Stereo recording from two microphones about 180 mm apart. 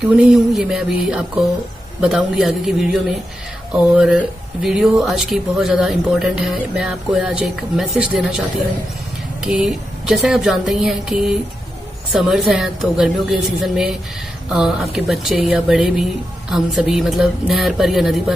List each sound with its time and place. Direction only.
0.2 s speech: centre (ahead or behind)
9.4 s speech: 5° right (ahead or behind)